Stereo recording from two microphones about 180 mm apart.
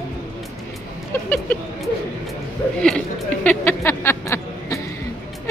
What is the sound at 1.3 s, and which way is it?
Speech, 5° left (ahead or behind).